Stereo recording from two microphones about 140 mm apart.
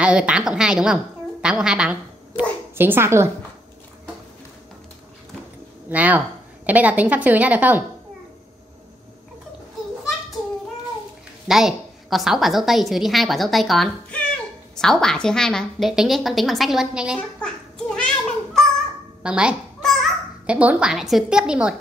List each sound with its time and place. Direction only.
0.0 s a woman's voice: 5° right (ahead or behind)
5.9 s a woman's voice: 10° right (ahead or behind)
11.4 s a woman's voice: 5° right (ahead or behind)
17.4 s cat: 5° left (ahead or behind)
19.2 s babbling: 5° right (ahead or behind)
20.4 s a woman's voice: 10° right (ahead or behind)